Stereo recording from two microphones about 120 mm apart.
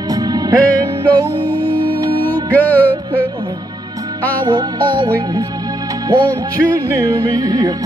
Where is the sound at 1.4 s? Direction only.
15° left (ahead or behind).